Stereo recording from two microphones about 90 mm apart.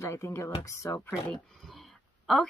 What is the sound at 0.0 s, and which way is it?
Speech, 30° left (ahead or behind).